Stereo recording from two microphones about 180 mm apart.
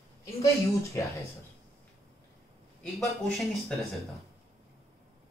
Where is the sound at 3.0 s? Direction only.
Centre (ahead or behind).